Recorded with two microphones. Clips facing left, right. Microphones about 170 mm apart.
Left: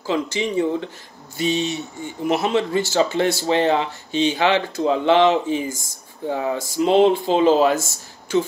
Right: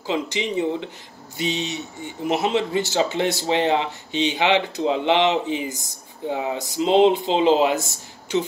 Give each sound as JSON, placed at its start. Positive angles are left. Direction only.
{"t": 0.0, "sound": "speech", "side_deg": -20}